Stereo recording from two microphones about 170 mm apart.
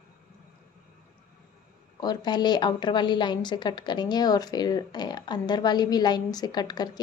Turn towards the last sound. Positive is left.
turn(degrees=25)  # may be behind; listen again after turning